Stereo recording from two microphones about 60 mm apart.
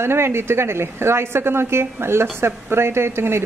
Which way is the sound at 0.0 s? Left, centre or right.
Right.